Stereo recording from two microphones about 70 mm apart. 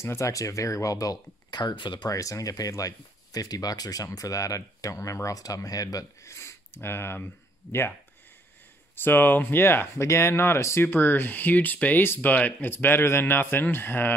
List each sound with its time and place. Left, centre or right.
0.0 s speech: left
2.0 s speech: left
6.3 s speech: left
8.9 s speech: left